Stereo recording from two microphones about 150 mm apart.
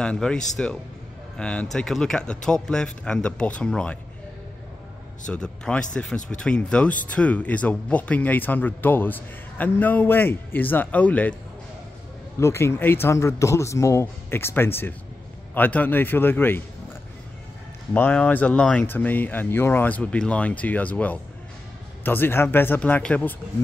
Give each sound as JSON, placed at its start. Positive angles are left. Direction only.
{"t": 0.0, "sound": "a man's voice", "side_deg": 5}
{"t": 5.3, "sound": "speech", "side_deg": 5}
{"t": 12.4, "sound": "speech", "side_deg": 15}
{"t": 17.9, "sound": "speech", "side_deg": 10}